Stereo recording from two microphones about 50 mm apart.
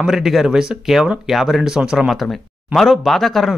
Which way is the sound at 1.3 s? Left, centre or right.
Centre.